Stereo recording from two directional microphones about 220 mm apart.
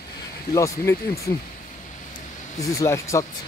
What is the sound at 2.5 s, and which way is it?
Speech, 15° left (ahead or behind).